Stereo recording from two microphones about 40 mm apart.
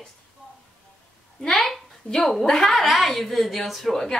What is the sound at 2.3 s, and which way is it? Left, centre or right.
Speech, centre.